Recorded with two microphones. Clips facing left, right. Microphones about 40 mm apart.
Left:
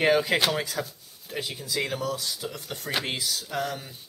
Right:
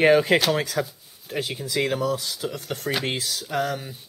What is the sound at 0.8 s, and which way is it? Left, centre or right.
Speech, centre.